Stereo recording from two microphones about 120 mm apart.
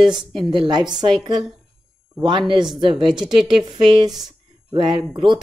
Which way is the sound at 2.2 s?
40° right (ahead or behind).